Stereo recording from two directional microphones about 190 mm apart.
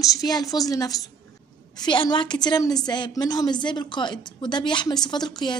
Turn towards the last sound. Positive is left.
turn(degrees=20)  # may be behind; listen again after turning